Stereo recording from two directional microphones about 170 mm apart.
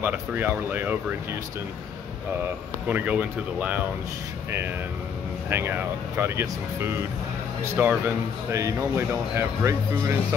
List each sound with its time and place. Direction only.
0.0 s speech: 10° right (ahead or behind)
2.9 s speech: 10° right (ahead or behind)
5.5 s speech: 10° right (ahead or behind)